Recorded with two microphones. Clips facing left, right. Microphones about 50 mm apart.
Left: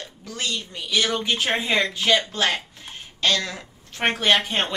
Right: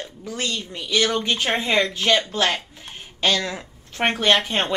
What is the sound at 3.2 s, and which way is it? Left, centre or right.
Speech, centre.